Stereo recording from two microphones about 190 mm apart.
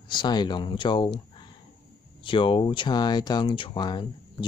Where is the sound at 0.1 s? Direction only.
25° left (ahead or behind).